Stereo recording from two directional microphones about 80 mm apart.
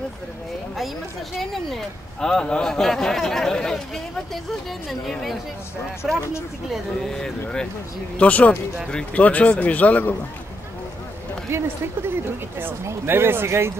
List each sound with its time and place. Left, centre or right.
1.4 s speech: centre
6.7 s speech: centre
8.2 s speech: centre
11.5 s speech: right